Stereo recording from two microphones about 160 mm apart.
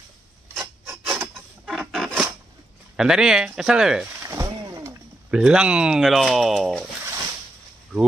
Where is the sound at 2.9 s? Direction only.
5° right (ahead or behind).